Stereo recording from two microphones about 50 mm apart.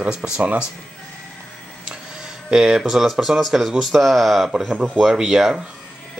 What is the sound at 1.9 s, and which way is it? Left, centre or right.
Speech, centre.